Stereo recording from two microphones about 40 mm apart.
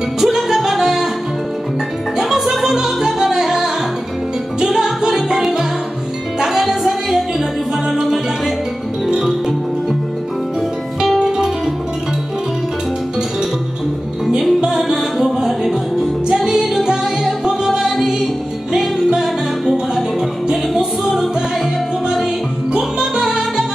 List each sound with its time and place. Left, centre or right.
0.2 s music: centre
2.1 s music: centre
11.1 s music: centre
14.6 s music: centre
19.0 s music: centre
19.7 s music: centre
22.7 s music: right